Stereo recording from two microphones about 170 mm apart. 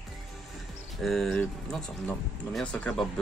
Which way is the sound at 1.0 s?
Centre (ahead or behind).